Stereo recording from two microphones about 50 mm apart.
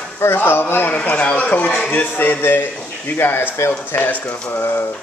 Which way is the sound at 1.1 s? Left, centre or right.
Left.